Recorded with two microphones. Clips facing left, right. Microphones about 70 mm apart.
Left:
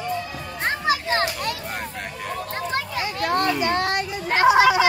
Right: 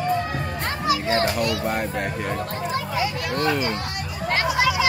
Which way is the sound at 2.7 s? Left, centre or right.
Left.